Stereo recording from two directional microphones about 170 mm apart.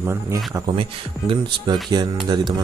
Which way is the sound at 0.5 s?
30° right (ahead or behind).